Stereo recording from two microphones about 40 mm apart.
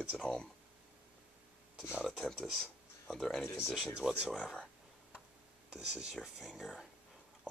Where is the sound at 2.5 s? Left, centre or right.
Centre.